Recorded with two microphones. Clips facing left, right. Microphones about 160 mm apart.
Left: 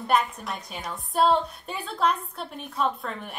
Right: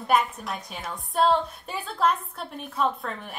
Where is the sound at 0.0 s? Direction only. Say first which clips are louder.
Right 1 dB; centre (ahead or behind).